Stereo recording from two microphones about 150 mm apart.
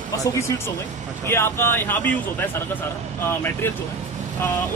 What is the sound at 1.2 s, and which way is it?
Speech, 15° left (ahead or behind).